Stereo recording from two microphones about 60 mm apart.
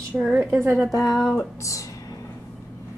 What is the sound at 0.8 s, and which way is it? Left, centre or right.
Speech, centre.